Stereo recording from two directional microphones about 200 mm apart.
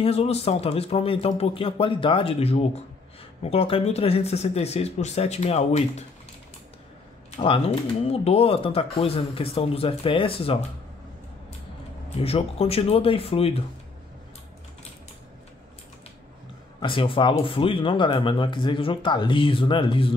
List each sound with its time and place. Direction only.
0.0 s speech: 30° left (ahead or behind)
7.2 s speech: 30° left (ahead or behind)
12.2 s speech: 30° left (ahead or behind)
16.8 s speech: 25° left (ahead or behind)